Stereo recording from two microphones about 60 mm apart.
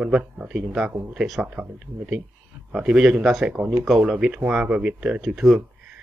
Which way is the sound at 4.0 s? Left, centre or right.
Centre.